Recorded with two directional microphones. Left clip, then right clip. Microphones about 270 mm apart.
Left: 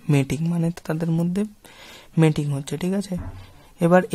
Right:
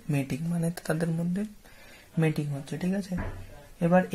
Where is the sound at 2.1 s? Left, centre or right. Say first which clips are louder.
Left 8 dB; left.